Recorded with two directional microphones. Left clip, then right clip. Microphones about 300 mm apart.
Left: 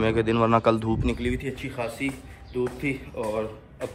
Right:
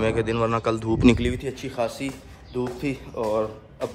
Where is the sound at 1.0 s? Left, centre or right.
Right.